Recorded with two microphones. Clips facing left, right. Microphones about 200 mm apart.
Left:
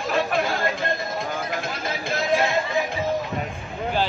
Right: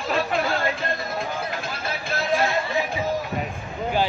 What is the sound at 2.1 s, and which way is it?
Music, 20° left (ahead or behind).